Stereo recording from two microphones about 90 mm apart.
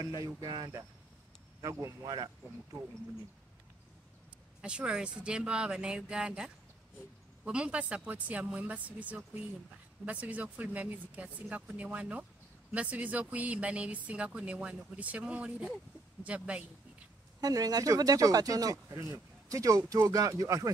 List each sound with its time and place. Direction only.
0.4 s speech: 45° right (ahead or behind)
2.0 s speech: 50° right (ahead or behind)
4.6 s speech: 10° right (ahead or behind)
17.4 s speech: 45° right (ahead or behind)